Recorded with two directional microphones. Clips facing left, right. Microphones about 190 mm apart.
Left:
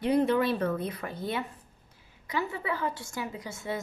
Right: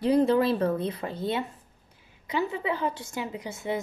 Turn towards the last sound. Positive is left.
turn(degrees=-20)  # may be behind; listen again after turning